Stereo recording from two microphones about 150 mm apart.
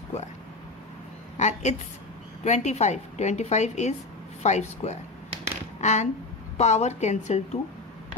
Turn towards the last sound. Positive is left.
turn(degrees=50)  # may be behind; listen again after turning